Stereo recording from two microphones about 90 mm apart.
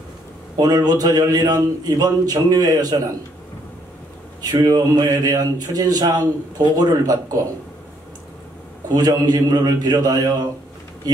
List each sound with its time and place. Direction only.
0.6 s a man's voice: 45° right (ahead or behind)
4.4 s a man's voice: 45° right (ahead or behind)
8.9 s a man's voice: 45° right (ahead or behind)